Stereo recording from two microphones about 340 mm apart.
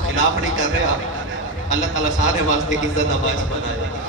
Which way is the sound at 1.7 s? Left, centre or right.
Right.